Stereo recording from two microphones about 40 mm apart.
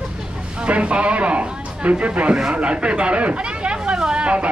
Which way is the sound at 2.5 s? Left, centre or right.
Right.